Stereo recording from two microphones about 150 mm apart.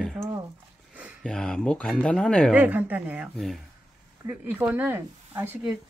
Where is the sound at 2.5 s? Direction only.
10° right (ahead or behind).